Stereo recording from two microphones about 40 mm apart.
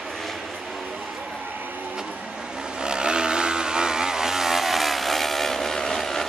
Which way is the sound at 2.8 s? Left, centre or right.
Right.